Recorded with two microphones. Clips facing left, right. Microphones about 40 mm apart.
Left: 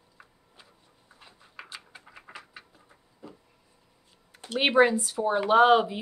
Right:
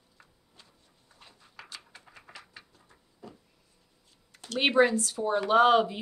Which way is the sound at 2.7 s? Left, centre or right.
Centre.